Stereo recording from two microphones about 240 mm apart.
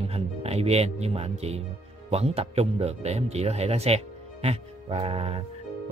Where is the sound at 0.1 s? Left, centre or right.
Right.